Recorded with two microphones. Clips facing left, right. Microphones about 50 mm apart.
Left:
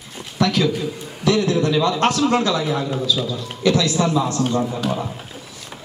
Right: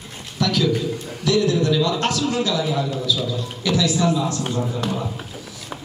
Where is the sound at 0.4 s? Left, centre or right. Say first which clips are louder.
Left 1 dB; left.